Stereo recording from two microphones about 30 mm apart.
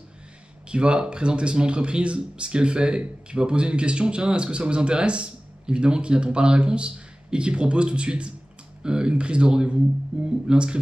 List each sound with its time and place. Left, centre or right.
0.7 s speech: right